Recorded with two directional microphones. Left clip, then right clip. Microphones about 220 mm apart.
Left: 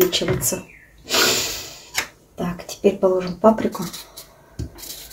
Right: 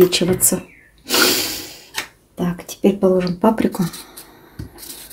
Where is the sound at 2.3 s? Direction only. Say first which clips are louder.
Right 3 dB; 50° right (ahead or behind).